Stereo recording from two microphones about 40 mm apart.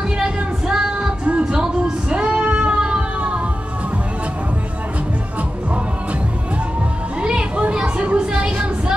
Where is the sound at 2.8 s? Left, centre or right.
Right.